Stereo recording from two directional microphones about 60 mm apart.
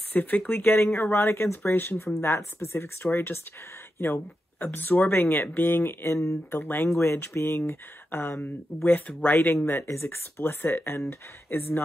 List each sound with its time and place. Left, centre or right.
0.1 s speech: left
7.0 s speech: left
9.7 s speech: left